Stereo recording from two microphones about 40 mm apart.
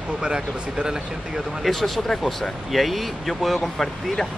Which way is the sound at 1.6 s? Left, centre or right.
Centre.